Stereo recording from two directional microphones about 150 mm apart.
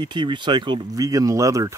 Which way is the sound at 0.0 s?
30° right (ahead or behind).